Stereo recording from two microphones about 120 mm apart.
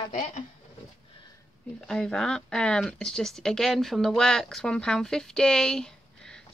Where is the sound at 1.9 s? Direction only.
5° left (ahead or behind).